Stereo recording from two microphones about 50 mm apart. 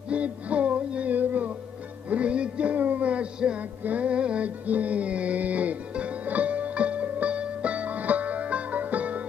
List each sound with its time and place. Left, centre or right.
0.1 s music: right
2.0 s music: right